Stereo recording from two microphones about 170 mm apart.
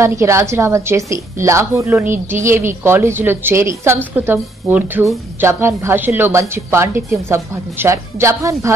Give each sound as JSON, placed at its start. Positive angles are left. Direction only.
{"t": 0.0, "sound": "a woman's voice", "side_deg": -15}